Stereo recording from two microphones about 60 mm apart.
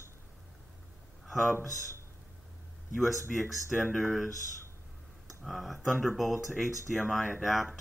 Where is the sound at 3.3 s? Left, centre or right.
Centre.